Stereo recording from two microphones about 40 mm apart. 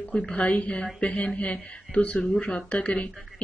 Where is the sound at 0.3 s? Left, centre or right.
Left.